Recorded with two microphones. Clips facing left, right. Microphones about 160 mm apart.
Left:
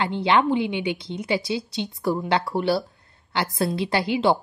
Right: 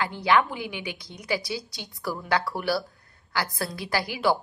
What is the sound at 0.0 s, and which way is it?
A woman's voice, 25° left (ahead or behind).